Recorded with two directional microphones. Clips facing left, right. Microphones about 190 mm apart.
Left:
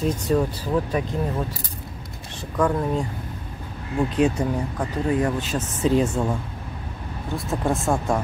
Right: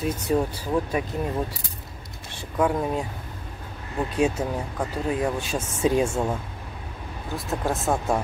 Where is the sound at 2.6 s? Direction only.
5° right (ahead or behind).